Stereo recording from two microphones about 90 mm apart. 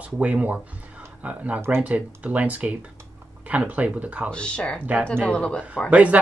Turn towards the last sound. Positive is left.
turn(degrees=-15)  # may be behind; listen again after turning